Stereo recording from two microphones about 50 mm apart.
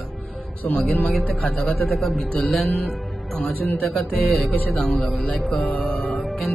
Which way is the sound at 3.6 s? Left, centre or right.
Left.